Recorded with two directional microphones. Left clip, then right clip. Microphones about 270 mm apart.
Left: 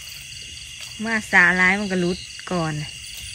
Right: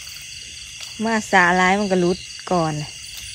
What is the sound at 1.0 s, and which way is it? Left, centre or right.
Speech, centre.